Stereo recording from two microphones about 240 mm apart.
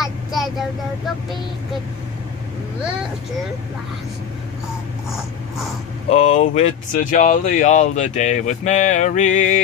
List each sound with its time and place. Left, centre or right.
0.0 s child singing: centre
6.0 s speech: left